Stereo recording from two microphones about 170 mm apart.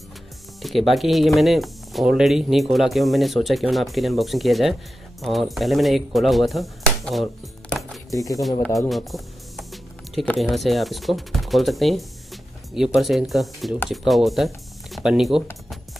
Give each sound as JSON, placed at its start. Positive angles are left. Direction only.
{"t": 0.6, "sound": "speech", "side_deg": 0}
{"t": 8.1, "sound": "speech", "side_deg": 20}
{"t": 8.6, "sound": "speech", "side_deg": 0}